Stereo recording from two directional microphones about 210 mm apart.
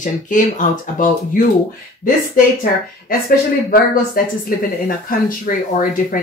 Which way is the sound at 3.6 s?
45° left (ahead or behind).